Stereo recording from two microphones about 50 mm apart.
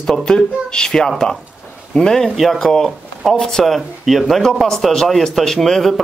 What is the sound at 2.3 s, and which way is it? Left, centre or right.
Speech, centre.